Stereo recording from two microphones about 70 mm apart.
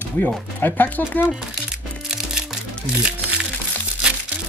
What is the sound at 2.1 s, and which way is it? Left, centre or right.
Music, centre.